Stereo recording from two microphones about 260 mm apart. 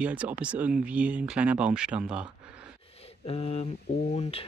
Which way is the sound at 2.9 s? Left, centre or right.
Left.